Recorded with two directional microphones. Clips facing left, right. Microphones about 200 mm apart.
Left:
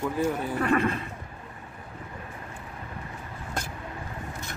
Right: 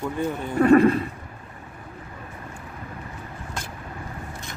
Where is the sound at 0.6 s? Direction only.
35° right (ahead or behind).